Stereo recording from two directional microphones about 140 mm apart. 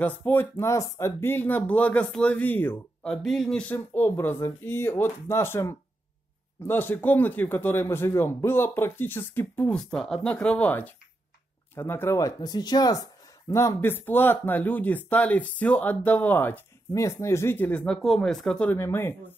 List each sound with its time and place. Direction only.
0.0 s speech: 15° left (ahead or behind)
9.8 s speech: 5° left (ahead or behind)
18.8 s speech: 15° left (ahead or behind)